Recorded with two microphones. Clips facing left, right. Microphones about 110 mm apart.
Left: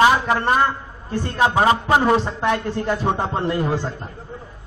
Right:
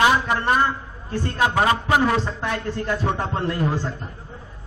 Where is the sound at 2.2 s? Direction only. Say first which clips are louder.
Left 5 dB; 65° left (ahead or behind).